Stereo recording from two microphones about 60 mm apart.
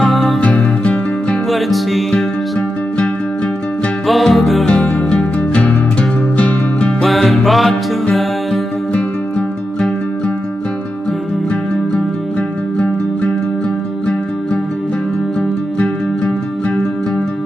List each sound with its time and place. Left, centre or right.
0.0 s music: centre
0.4 s music: left
1.5 s music: centre
4.1 s music: centre
4.6 s music: left
7.0 s music: centre